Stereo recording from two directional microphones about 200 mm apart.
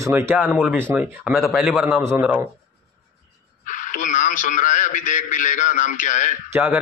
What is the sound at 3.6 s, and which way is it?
A man's voice, 40° left (ahead or behind).